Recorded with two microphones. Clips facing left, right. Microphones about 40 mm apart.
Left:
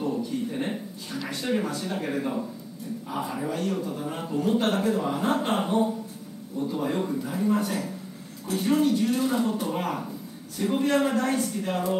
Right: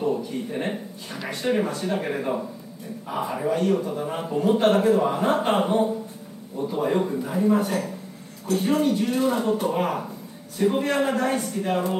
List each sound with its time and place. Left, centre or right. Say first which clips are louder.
0.5 s a man's voice: right 2 dB; right